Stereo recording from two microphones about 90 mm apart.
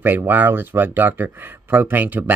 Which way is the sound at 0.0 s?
20° right (ahead or behind).